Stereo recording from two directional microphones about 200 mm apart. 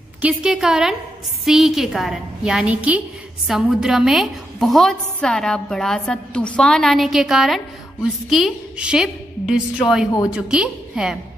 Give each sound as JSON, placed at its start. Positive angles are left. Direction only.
{"t": 0.2, "sound": "a woman's voice", "side_deg": -5}